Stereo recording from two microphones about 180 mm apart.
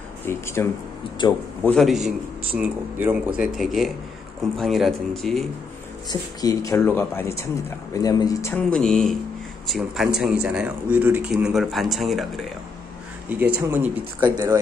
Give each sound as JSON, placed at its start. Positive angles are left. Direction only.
{"t": 0.3, "sound": "speech", "side_deg": 15}
{"t": 1.2, "sound": "speech", "side_deg": 25}
{"t": 1.6, "sound": "a man's voice", "side_deg": 5}
{"t": 6.0, "sound": "speech", "side_deg": 20}
{"t": 8.7, "sound": "a man's voice", "side_deg": 5}
{"t": 13.3, "sound": "speech", "side_deg": -10}